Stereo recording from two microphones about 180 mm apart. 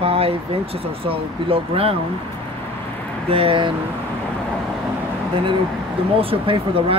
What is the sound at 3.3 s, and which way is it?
Speech, 30° right (ahead or behind).